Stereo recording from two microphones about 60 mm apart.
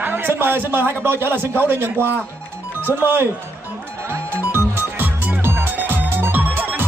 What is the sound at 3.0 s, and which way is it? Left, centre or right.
Speech, right.